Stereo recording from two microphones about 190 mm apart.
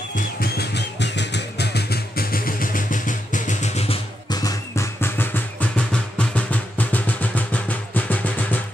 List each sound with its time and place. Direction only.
0.1 s music: 55° left (ahead or behind); by 4.0 s 35° left (ahead or behind)
4.3 s music: 20° left (ahead or behind)